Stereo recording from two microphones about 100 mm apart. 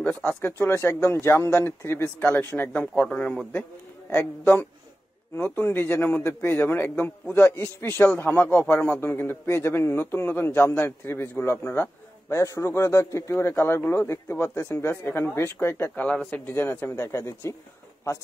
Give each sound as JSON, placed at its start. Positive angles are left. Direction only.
{"t": 0.0, "sound": "a man's voice", "side_deg": 10}
{"t": 0.4, "sound": "a man's voice", "side_deg": 25}
{"t": 4.1, "sound": "a man's voice", "side_deg": 25}
{"t": 12.3, "sound": "a man's voice", "side_deg": 30}